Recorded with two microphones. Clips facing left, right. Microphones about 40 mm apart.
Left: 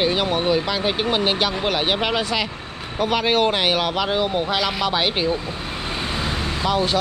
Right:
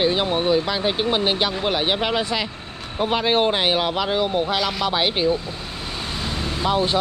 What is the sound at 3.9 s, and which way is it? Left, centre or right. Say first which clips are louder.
Speech: even; centre.